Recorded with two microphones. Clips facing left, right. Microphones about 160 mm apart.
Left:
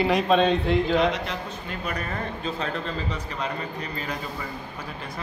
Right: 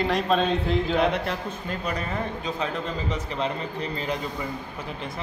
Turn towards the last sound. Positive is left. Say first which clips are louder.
# right 2 dB
turn(degrees=-20)  # may be behind; listen again after turning